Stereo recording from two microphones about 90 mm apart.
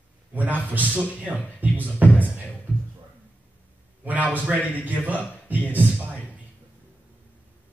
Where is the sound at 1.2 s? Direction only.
20° right (ahead or behind).